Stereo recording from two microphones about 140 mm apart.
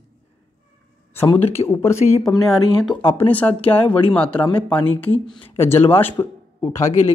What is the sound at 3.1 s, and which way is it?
Speech, 10° left (ahead or behind).